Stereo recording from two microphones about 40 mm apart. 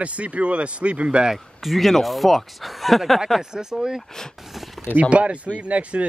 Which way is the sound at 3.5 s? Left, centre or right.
Centre.